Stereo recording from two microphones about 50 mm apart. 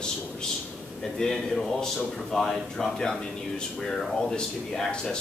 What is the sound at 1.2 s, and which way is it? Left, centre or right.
Speech, centre.